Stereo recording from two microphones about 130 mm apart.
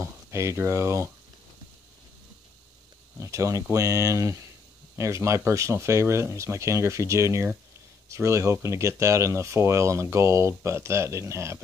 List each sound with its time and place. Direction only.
0.0 s speech: 20° right (ahead or behind)
3.2 s speech: 25° right (ahead or behind)